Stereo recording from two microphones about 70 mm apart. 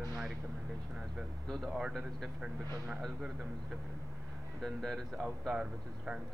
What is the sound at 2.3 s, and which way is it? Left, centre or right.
Speech, centre.